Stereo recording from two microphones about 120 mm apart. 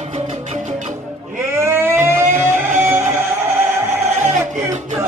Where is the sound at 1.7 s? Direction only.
20° right (ahead or behind).